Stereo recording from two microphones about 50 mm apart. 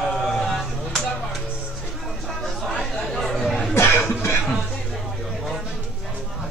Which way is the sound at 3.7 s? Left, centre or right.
Left.